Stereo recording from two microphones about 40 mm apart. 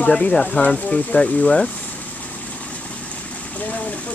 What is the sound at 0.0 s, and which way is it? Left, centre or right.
Speech, left.